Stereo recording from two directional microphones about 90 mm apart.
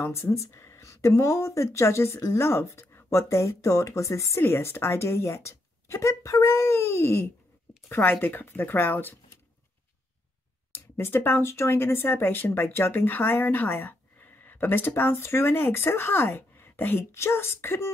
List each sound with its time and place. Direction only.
0.0 s speech: 30° left (ahead or behind)
10.7 s speech: 25° left (ahead or behind)